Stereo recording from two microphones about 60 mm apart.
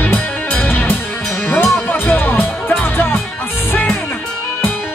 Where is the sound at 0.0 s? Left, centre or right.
Left.